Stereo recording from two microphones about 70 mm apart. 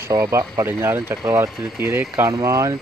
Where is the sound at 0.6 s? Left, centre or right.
Right.